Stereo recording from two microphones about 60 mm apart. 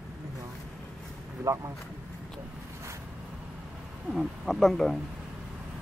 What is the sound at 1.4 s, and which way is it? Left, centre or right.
Speech, right.